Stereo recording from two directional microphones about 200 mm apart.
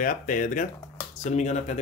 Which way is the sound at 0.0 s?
40° left (ahead or behind).